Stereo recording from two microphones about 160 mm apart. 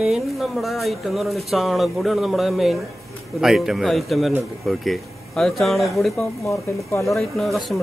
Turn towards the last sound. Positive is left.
turn(degrees=0)  # may be behind; listen again after turning